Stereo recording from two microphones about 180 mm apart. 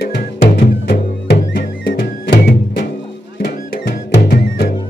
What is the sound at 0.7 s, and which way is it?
Music, 60° left (ahead or behind).